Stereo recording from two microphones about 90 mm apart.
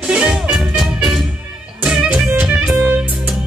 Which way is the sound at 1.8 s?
15° right (ahead or behind).